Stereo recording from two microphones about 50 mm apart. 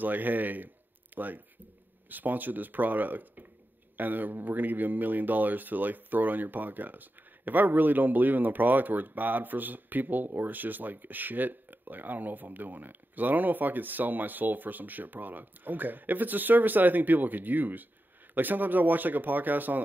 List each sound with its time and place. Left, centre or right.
0.0 s speech: right